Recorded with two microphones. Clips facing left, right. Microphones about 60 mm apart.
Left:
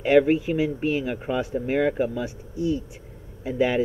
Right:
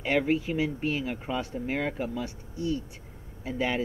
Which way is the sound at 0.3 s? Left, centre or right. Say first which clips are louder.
Left 5 dB; centre.